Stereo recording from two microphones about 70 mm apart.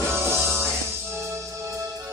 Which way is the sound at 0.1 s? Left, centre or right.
Right.